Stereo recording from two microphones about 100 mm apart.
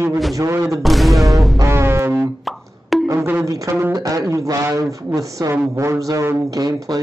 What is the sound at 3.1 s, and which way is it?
A man's voice, 25° right (ahead or behind).